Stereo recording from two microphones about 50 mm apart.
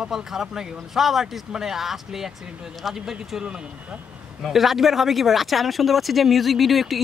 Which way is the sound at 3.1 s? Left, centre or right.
Centre.